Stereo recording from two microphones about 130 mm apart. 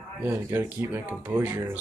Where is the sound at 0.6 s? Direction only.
15° right (ahead or behind).